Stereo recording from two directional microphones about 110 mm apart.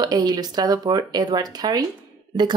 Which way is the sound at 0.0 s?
35° right (ahead or behind).